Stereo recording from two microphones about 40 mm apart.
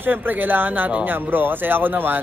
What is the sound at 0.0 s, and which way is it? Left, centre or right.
Speech, right.